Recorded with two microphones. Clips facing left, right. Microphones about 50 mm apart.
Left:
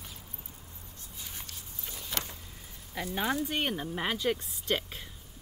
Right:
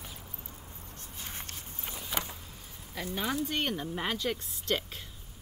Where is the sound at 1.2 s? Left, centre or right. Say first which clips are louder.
Right 2 dB; right.